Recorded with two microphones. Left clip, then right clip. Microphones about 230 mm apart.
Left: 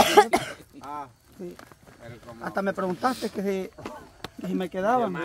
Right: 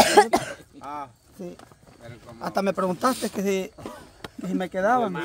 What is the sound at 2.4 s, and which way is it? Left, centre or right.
Speech, right.